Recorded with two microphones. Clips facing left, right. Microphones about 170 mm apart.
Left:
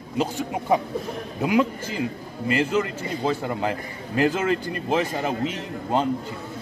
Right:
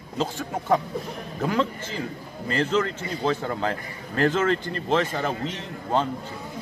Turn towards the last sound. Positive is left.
turn(degrees=15)  # may be behind; listen again after turning